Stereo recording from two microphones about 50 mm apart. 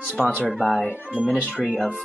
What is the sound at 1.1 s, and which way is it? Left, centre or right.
Speech, right.